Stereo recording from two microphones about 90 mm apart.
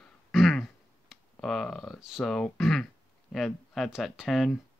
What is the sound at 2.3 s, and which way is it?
Speech, 5° left (ahead or behind).